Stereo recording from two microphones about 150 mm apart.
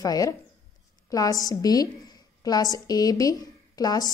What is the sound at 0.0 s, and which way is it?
A woman's voice, 25° left (ahead or behind).